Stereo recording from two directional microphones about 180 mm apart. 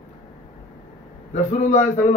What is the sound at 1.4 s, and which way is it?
Speech, 40° left (ahead or behind).